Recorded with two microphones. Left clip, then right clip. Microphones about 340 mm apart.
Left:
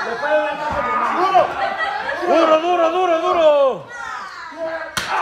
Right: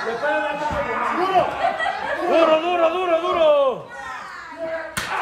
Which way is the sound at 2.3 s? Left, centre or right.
Left.